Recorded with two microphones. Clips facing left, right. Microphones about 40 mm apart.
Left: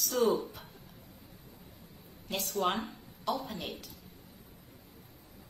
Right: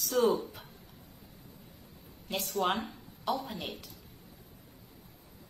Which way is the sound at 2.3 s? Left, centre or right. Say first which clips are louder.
Right 1 dB; centre.